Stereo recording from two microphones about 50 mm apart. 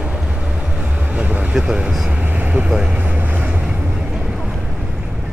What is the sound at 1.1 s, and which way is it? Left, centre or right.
Vehicle, right.